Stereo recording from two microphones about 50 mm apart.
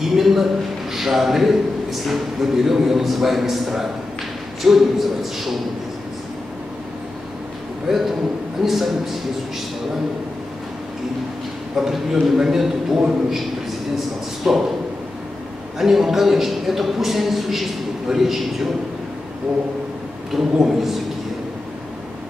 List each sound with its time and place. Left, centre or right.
0.0 s a man's voice: centre
8.6 s a man's voice: centre
11.7 s a man's voice: centre
15.8 s a man's voice: centre
20.3 s a man's voice: centre